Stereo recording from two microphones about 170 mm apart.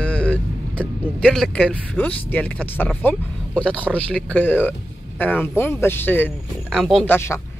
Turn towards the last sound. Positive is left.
turn(degrees=15)  # may be behind; listen again after turning